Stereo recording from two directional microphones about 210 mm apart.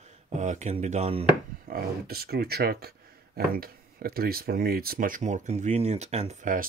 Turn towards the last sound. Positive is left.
turn(degrees=-40)  # may be behind; listen again after turning